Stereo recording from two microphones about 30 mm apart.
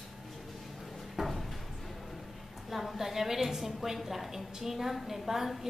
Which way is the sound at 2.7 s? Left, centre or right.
Centre.